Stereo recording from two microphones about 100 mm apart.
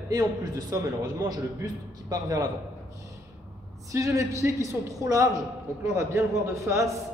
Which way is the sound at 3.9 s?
30° right (ahead or behind).